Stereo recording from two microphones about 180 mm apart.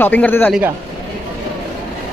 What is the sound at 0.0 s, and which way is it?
Speech, 10° left (ahead or behind).